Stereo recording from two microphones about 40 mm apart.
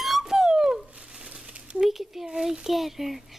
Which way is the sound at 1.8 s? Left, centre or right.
Centre.